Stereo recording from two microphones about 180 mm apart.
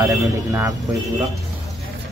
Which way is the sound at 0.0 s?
20° right (ahead or behind).